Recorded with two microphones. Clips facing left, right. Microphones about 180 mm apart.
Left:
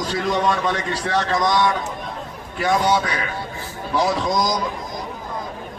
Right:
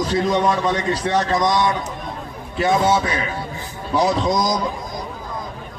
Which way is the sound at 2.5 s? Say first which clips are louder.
Right 2 dB; 25° right (ahead or behind).